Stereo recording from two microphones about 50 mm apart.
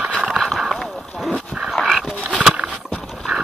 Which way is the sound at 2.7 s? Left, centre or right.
Left.